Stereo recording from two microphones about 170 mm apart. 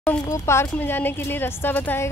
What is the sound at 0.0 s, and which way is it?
Speech, 15° left (ahead or behind).